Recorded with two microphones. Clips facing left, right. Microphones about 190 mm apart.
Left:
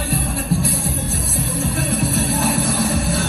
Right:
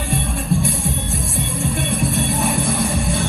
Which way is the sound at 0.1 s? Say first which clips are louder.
Right 1 dB; centre (ahead or behind).